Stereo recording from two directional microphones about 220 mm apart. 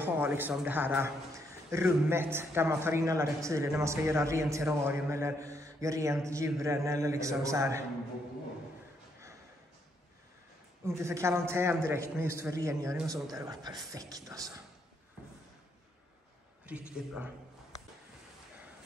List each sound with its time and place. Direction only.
0.0 s a man's voice: 10° right (ahead or behind)
11.0 s a man's voice: 10° right (ahead or behind)
16.6 s a man's voice: 5° right (ahead or behind)